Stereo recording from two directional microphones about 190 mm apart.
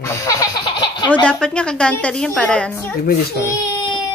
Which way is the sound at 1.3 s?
5° left (ahead or behind).